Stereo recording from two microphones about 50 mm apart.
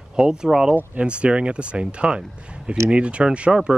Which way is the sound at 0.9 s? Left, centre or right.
Right.